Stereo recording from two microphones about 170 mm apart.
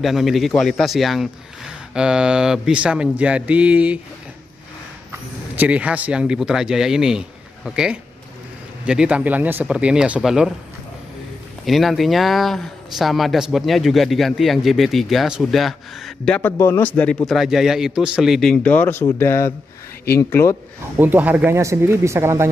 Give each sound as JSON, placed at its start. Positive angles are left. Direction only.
{"t": 0.0, "sound": "speech", "side_deg": 0}
{"t": 5.1, "sound": "speech", "side_deg": -10}
{"t": 11.6, "sound": "speech", "side_deg": 0}
{"t": 21.0, "sound": "speech", "side_deg": -10}